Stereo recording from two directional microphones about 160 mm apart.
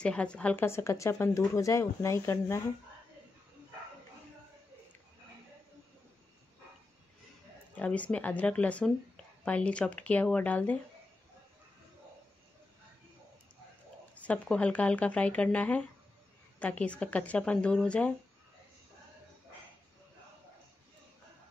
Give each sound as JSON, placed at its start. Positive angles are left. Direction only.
{"t": 0.0, "sound": "speech", "side_deg": 5}
{"t": 7.7, "sound": "speech", "side_deg": 10}
{"t": 14.1, "sound": "speech", "side_deg": 10}